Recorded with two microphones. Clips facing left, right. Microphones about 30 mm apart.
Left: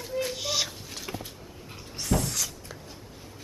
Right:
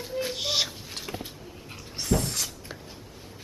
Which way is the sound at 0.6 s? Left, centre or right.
Centre.